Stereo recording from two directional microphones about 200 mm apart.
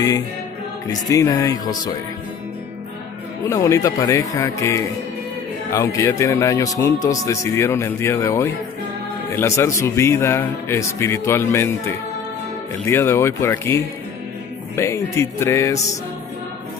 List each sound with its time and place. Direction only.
1.0 s speech: 15° left (ahead or behind)
3.4 s speech: 15° left (ahead or behind)